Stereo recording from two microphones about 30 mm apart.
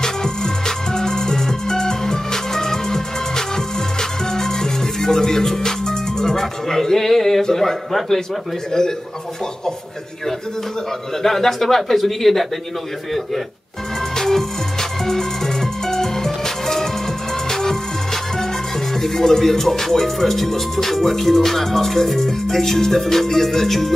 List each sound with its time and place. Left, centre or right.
0.0 s music: centre
6.4 s speech: centre
11.2 s speech: centre
14.1 s music: centre
18.9 s speech: centre